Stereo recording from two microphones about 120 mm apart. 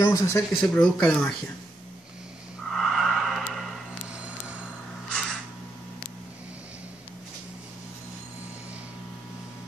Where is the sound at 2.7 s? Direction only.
Centre (ahead or behind).